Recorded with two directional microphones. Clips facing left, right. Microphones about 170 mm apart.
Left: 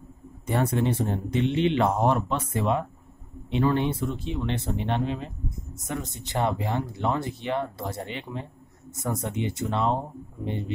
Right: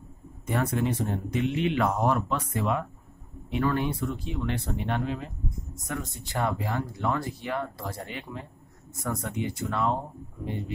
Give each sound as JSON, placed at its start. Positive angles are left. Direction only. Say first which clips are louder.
{"t": 0.5, "sound": "speech", "louder": "left 2 dB", "side_deg": 30}